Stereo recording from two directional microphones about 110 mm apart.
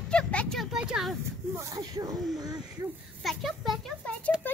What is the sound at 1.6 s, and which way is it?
Speech, 30° right (ahead or behind).